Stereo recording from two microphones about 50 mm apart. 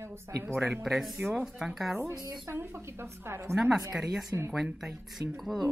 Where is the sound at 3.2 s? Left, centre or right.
Right.